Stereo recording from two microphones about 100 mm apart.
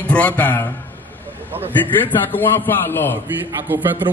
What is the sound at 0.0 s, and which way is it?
Speech, 15° left (ahead or behind).